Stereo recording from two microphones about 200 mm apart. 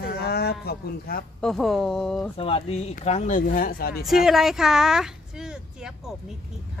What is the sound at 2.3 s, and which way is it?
Speech, 30° left (ahead or behind).